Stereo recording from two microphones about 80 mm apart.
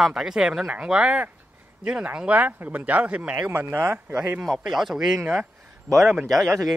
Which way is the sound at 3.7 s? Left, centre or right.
Right.